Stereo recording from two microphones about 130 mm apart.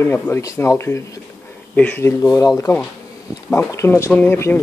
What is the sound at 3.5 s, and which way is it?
Speech, 20° left (ahead or behind).